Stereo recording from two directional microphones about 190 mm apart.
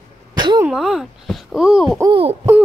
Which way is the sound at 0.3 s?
20° right (ahead or behind).